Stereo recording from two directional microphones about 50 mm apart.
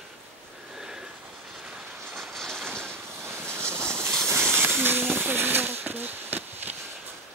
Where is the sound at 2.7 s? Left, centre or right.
Right.